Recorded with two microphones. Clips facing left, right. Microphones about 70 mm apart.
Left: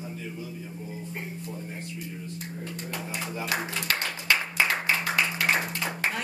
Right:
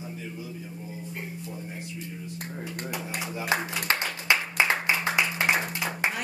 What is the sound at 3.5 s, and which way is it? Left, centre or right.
Clapping, right.